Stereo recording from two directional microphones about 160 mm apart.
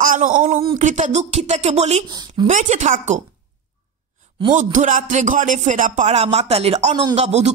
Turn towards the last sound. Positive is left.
turn(degrees=-45)  # may be behind; listen again after turning